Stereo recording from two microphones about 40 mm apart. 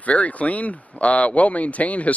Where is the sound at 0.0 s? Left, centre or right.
Left.